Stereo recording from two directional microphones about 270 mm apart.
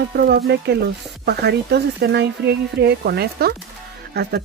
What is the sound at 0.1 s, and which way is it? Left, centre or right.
Speech, right.